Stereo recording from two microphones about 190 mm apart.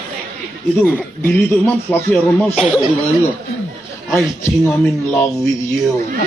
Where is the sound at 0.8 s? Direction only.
10° left (ahead or behind).